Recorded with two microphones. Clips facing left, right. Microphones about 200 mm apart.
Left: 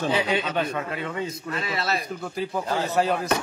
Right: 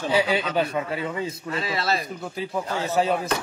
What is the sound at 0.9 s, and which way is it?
Speech, 30° right (ahead or behind).